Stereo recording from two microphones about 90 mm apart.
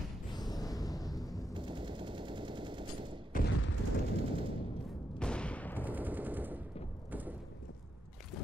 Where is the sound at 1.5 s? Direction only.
65° right (ahead or behind).